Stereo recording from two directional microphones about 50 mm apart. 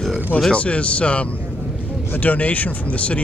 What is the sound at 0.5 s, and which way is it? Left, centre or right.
Speech, left.